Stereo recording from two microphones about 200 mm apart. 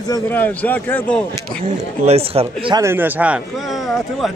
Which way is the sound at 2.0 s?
30° right (ahead or behind).